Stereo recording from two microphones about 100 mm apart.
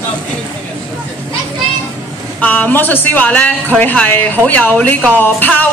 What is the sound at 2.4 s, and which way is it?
A woman's voice, 15° left (ahead or behind).